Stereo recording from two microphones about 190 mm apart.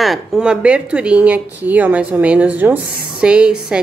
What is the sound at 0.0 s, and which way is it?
Speech, centre (ahead or behind).